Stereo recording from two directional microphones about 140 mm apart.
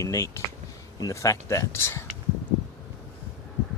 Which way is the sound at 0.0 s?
20° left (ahead or behind).